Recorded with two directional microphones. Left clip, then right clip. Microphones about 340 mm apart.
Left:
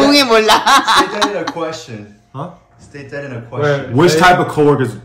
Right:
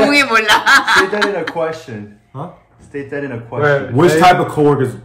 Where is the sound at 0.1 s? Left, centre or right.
Centre.